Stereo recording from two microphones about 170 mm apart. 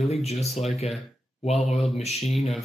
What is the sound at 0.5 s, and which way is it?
Speech, centre (ahead or behind).